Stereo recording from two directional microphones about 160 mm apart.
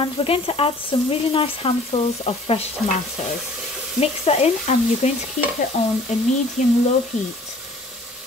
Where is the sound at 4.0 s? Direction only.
40° left (ahead or behind).